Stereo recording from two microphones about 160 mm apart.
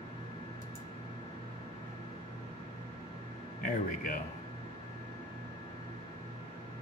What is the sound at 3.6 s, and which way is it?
Speech, 60° left (ahead or behind).